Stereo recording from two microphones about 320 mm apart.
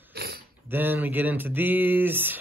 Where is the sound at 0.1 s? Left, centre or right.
Right.